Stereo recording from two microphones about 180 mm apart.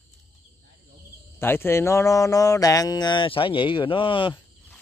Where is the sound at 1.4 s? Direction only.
15° left (ahead or behind).